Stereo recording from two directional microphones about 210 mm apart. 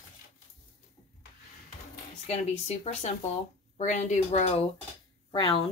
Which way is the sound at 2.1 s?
30° left (ahead or behind).